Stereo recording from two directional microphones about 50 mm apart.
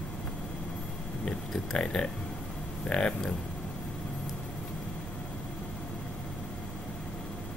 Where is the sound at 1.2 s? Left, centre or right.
Centre.